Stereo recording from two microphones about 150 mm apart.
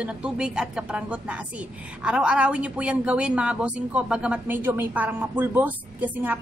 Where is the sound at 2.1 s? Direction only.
5° right (ahead or behind).